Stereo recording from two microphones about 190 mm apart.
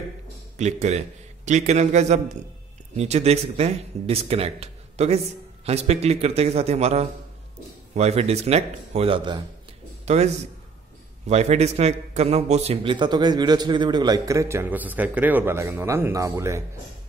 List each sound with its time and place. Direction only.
0.6 s a man's voice: 35° right (ahead or behind); by 16.6 s 15° right (ahead or behind)